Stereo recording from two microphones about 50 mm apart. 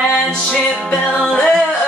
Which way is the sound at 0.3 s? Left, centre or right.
Centre.